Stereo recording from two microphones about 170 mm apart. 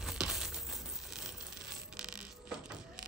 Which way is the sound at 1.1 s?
5° right (ahead or behind).